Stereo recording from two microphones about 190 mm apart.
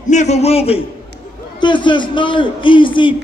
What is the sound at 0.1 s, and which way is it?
A man's voice, 35° left (ahead or behind).